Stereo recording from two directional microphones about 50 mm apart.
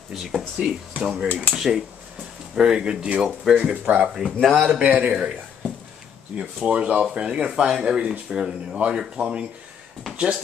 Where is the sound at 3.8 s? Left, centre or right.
Right.